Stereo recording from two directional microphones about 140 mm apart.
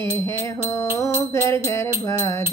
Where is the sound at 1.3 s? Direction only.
20° left (ahead or behind).